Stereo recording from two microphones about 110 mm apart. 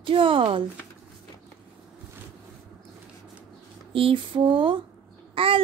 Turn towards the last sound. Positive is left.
turn(degrees=-55)  # may be behind; listen again after turning